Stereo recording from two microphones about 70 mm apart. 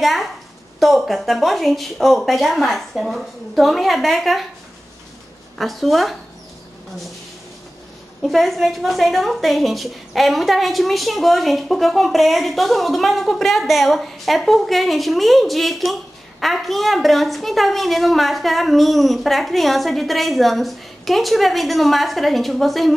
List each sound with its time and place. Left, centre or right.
0.7 s a woman's voice: centre
5.6 s a woman's voice: centre
8.2 s a woman's voice: centre